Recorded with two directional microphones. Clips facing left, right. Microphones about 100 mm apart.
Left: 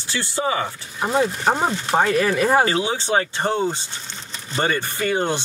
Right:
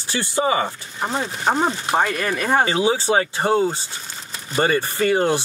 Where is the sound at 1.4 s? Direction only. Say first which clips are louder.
Even; 5° left (ahead or behind).